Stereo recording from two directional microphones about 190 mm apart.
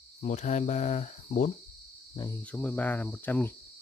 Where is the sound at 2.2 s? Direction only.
10° left (ahead or behind).